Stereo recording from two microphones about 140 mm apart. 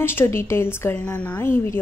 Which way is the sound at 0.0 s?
15° left (ahead or behind).